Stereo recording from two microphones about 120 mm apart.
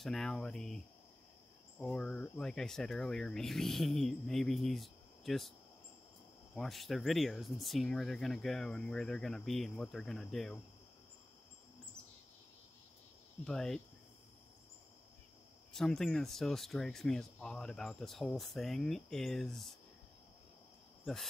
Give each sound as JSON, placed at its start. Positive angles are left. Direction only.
{"t": 0.0, "sound": "speech", "side_deg": 5}
{"t": 1.8, "sound": "speech", "side_deg": 5}
{"t": 6.5, "sound": "speech", "side_deg": 0}
{"t": 13.4, "sound": "speech", "side_deg": 5}
{"t": 15.7, "sound": "speech", "side_deg": 5}
{"t": 21.0, "sound": "cricket", "side_deg": 0}